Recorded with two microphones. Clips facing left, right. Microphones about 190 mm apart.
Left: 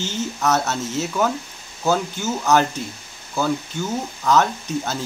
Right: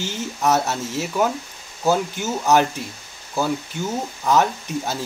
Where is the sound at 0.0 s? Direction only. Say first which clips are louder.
Even; 15° right (ahead or behind).